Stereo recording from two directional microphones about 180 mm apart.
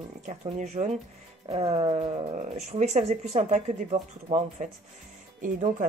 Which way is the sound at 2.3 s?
40° right (ahead or behind).